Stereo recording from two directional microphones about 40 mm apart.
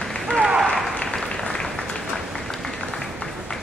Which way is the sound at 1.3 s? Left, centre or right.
Centre.